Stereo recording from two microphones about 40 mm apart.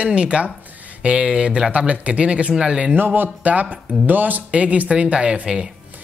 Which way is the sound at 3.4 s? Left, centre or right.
Right.